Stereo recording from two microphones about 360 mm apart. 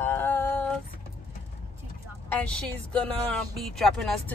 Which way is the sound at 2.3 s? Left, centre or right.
Centre.